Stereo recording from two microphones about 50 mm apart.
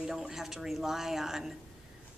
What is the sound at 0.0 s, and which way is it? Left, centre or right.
A woman's voice, centre.